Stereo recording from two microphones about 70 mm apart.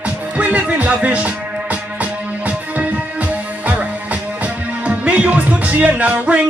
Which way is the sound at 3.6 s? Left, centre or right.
Right.